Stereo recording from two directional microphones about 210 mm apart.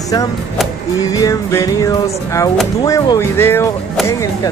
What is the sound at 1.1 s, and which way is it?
Speech, 15° left (ahead or behind).